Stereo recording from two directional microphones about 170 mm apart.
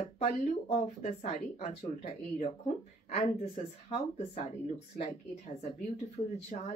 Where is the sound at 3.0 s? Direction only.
40° left (ahead or behind).